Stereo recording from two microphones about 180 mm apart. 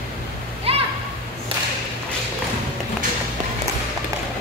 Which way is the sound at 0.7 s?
35° right (ahead or behind).